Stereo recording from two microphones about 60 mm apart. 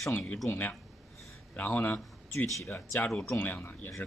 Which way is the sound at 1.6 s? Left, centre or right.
Left.